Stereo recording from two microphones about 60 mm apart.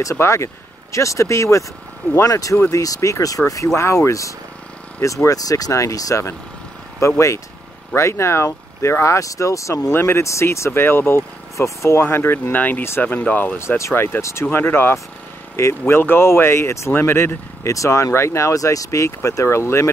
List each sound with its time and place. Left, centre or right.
0.1 s speech: left
2.2 s speech: left
3.7 s speech: left
7.0 s speech: left
9.9 s speech: left
10.2 s speech: left
11.5 s speech: left
12.5 s speech: left
13.6 s speech: left
13.9 s speech: left